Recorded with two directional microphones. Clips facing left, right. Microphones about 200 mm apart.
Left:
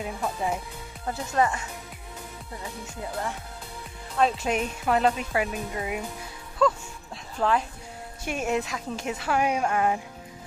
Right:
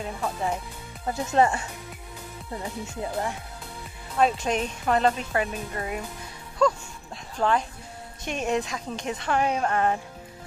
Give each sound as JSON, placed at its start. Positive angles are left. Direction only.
{"t": 0.0, "sound": "speech", "side_deg": 5}
{"t": 1.0, "sound": "speech", "side_deg": -25}
{"t": 4.2, "sound": "a woman's voice", "side_deg": -5}